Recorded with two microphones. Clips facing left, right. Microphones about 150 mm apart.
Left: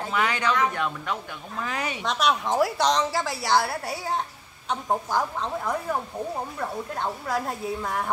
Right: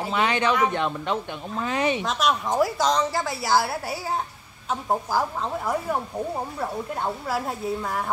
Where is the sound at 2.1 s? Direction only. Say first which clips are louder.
Even; centre (ahead or behind).